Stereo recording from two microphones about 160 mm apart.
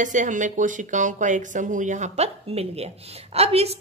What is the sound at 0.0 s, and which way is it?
A woman's voice, 50° right (ahead or behind).